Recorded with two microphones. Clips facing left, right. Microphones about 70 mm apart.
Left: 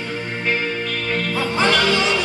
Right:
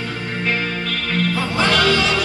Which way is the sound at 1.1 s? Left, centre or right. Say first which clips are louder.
Right 2 dB; left.